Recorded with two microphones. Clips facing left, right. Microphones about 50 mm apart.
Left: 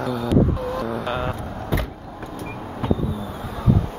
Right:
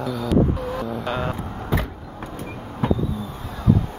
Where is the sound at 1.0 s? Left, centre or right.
Centre.